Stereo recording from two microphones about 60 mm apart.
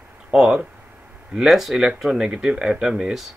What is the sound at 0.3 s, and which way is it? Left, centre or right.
Speech, centre.